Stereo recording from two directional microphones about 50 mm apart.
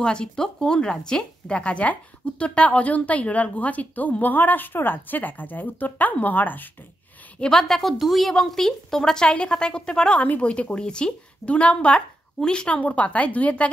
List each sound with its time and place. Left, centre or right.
0.0 s a woman's voice: centre
1.5 s a woman's voice: left
7.3 s a woman's voice: centre
10.1 s speech: left